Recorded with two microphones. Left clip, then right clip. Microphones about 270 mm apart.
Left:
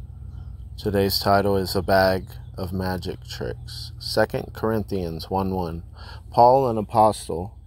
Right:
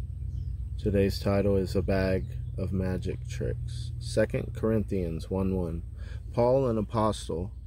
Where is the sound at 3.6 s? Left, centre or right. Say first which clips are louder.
Left 10 dB; right.